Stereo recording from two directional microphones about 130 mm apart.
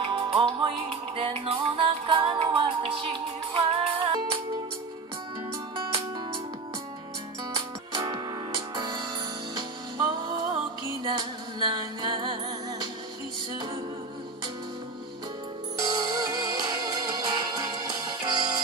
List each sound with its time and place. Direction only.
0.0 s music: 45° right (ahead or behind)
5.8 s music: 40° right (ahead or behind)
7.5 s music: 35° right (ahead or behind)
15.8 s music: 25° right (ahead or behind)